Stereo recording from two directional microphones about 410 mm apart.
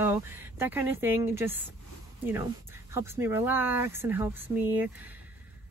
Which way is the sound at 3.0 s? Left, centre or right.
Centre.